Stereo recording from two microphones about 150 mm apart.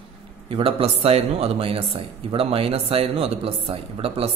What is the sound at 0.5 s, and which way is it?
Speech, 40° right (ahead or behind).